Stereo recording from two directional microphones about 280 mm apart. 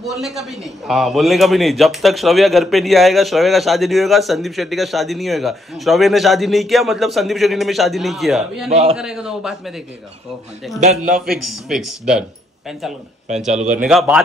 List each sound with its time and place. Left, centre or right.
0.0 s a man's voice: centre
10.8 s a man's voice: right
11.1 s a man's voice: centre
13.5 s a man's voice: right
13.8 s a man's voice: centre